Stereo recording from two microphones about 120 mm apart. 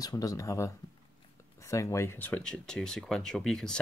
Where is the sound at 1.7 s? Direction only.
25° left (ahead or behind).